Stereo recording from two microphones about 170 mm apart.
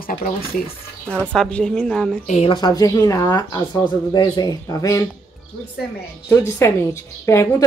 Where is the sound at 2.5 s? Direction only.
25° left (ahead or behind).